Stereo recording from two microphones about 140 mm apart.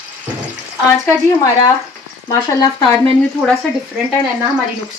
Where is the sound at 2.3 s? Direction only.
25° left (ahead or behind).